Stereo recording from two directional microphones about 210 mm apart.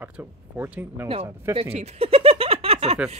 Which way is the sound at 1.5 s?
30° right (ahead or behind).